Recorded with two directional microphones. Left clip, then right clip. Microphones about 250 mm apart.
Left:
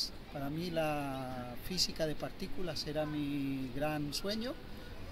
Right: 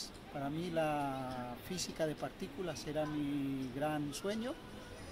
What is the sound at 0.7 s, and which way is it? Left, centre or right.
Speech, centre.